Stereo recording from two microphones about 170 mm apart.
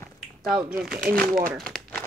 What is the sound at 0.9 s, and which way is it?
Speech, 60° right (ahead or behind).